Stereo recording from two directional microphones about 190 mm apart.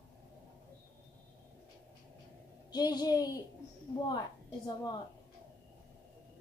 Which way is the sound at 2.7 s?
20° left (ahead or behind).